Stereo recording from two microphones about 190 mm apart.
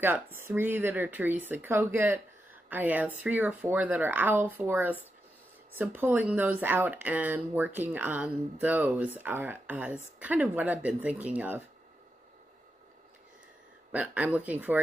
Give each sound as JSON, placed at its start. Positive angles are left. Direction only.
{"t": 0.4, "sound": "speech", "side_deg": -10}
{"t": 13.9, "sound": "speech", "side_deg": -10}